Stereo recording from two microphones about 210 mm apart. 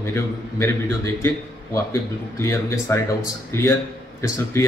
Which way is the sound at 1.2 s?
15° left (ahead or behind).